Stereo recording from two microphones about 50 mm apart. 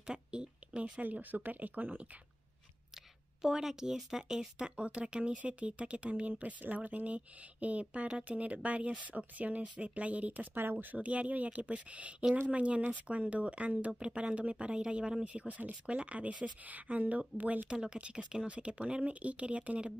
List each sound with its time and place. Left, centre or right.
0.0 s speech: centre; by 2.0 s right
3.4 s speech: centre; by 10.5 s right
10.5 s speech: right
11.0 s speech: right
17.6 s speech: centre